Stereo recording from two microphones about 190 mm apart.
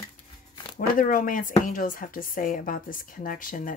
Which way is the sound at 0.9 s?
45° left (ahead or behind).